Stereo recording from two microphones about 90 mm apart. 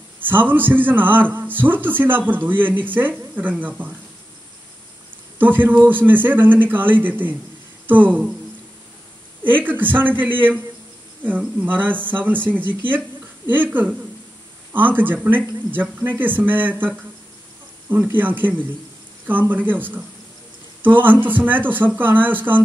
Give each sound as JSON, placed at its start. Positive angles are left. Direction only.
{"t": 0.3, "sound": "a man's voice", "side_deg": -20}
{"t": 5.4, "sound": "a man's voice", "side_deg": -20}
{"t": 9.4, "sound": "a man's voice", "side_deg": -20}